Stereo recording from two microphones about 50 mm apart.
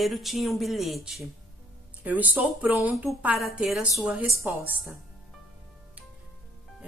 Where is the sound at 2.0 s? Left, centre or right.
Right.